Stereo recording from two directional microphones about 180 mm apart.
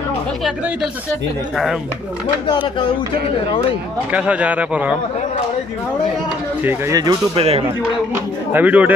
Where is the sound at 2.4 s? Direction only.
25° left (ahead or behind).